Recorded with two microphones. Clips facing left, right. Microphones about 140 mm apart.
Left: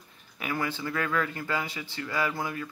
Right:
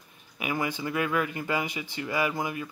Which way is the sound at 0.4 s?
15° right (ahead or behind).